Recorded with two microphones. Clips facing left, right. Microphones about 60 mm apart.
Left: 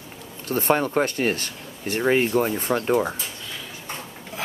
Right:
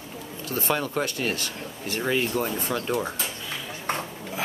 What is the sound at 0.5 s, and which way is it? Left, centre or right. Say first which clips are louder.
Speech: left 6 dB; left.